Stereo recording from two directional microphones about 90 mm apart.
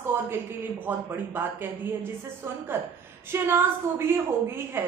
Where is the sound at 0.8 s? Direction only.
25° right (ahead or behind).